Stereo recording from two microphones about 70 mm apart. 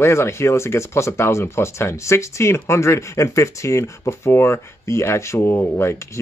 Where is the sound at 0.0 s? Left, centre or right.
Left.